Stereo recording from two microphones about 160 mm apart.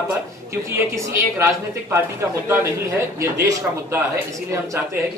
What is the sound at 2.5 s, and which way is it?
Speech, 15° right (ahead or behind).